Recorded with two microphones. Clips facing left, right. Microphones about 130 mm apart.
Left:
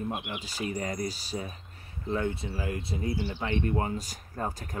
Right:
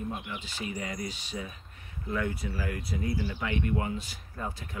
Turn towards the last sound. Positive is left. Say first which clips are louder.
# left 3 dB
turn(degrees=40)  # may be behind; listen again after turning